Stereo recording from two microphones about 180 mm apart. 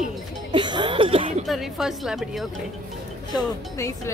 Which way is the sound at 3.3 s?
15° left (ahead or behind).